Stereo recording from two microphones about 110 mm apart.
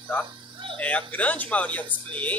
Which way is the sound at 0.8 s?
10° left (ahead or behind).